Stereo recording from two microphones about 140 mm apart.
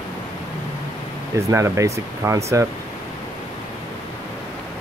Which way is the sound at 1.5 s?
20° right (ahead or behind).